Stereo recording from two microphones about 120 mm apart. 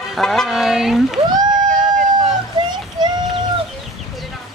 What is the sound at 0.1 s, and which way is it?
Speech, centre (ahead or behind).